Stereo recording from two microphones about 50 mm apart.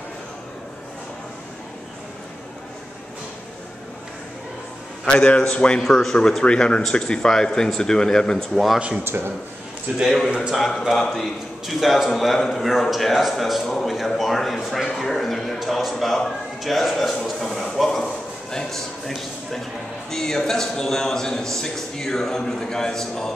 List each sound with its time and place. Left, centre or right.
5.0 s a man's voice: left
5.9 s a man's voice: centre
6.4 s a man's voice: centre
8.7 s speech: centre
9.0 s speech: right
10.0 s a man's voice: centre
11.0 s a man's voice: centre
11.6 s a man's voice: centre
15.0 s a sound: centre
15.9 s a man's voice: centre
17.0 s a sound: centre
20.1 s a man's voice: centre